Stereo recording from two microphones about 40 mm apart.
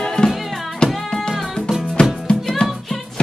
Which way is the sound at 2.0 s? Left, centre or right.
Left.